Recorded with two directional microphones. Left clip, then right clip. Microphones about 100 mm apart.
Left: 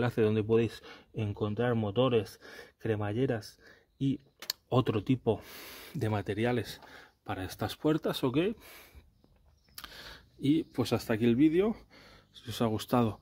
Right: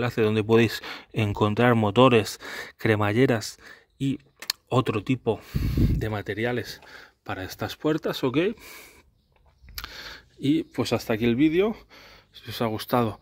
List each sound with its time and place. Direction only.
0.2 s speech: 20° right (ahead or behind)
0.5 s speech: 40° right (ahead or behind)
4.0 s speech: 5° right (ahead or behind)
5.5 s speech: 15° left (ahead or behind)
6.8 s speech: 5° right (ahead or behind)
9.8 s speech: 15° right (ahead or behind)
12.4 s speech: 15° left (ahead or behind)